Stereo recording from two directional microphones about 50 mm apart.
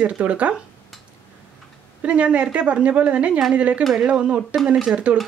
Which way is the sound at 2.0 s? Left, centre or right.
Right.